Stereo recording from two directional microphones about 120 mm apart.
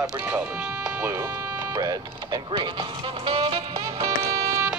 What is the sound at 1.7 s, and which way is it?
Speech, 30° right (ahead or behind).